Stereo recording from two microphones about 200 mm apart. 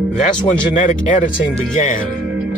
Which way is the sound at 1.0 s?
40° left (ahead or behind).